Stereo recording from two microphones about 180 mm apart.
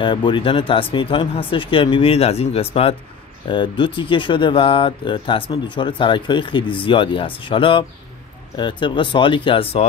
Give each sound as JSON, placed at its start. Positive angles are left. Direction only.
{"t": 0.0, "sound": "speech", "side_deg": 25}